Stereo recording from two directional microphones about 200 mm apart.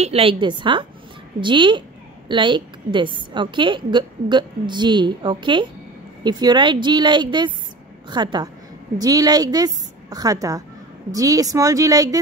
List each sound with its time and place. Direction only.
0.0 s a woman's voice: 30° right (ahead or behind)